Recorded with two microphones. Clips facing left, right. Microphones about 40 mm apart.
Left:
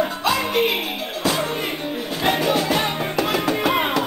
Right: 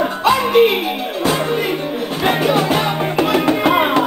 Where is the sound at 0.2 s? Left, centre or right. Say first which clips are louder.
Right 6 dB; right.